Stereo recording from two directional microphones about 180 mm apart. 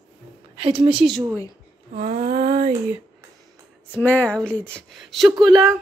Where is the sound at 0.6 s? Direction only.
30° right (ahead or behind).